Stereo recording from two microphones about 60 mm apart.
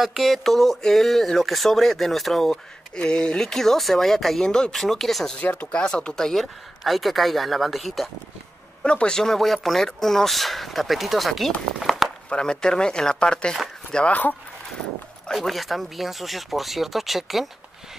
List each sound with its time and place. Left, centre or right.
0.0 s speech: centre
4.7 s speech: centre
5.4 s speech: left
5.7 s speech: centre
8.8 s speech: centre
11.8 s walk: centre
12.3 s speech: centre
15.3 s speech: centre